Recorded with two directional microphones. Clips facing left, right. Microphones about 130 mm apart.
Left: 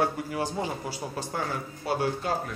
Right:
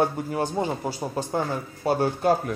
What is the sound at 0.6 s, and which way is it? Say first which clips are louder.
Speech: right 5 dB; 45° right (ahead or behind).